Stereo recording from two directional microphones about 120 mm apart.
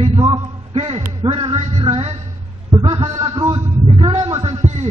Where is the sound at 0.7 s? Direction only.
55° right (ahead or behind).